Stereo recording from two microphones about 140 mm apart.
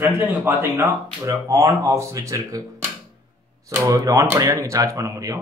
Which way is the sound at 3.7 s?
20° right (ahead or behind).